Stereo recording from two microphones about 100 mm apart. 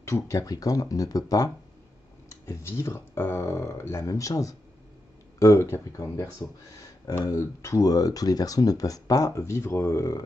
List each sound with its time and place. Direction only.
0.0 s speech: 30° left (ahead or behind)